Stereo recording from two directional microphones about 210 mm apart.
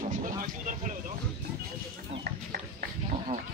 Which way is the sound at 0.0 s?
40° right (ahead or behind).